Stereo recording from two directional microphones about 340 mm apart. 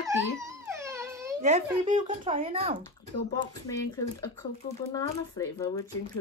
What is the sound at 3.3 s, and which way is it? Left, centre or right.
Speech, centre.